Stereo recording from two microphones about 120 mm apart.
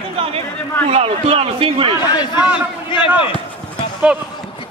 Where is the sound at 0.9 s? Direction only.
55° right (ahead or behind).